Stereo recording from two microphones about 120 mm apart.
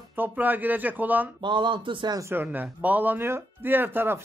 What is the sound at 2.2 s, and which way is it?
Speech, 20° right (ahead or behind).